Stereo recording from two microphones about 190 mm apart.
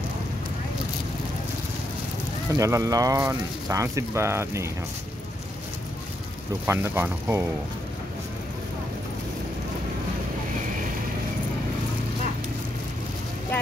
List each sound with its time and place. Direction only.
2.5 s speech: 15° right (ahead or behind)
6.6 s speech: 10° right (ahead or behind)